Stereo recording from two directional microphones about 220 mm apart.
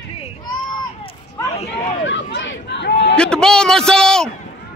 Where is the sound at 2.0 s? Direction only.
55° left (ahead or behind).